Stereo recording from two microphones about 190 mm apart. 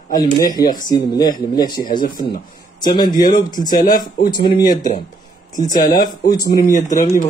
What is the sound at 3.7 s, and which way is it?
Speech, 45° left (ahead or behind).